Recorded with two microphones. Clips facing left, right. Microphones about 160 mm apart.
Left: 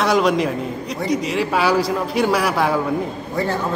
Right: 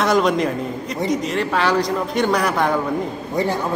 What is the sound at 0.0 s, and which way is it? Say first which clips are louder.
A man's voice: even; centre (ahead or behind).